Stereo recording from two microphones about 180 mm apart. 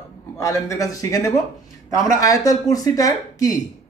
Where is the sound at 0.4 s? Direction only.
15° left (ahead or behind).